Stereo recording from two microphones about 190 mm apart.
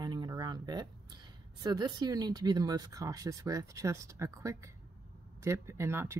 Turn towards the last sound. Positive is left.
turn(degrees=-15)  # may be behind; listen again after turning